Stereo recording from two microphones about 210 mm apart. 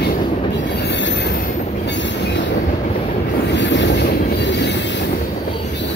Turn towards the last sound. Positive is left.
turn(degrees=60)  # may be behind; listen again after turning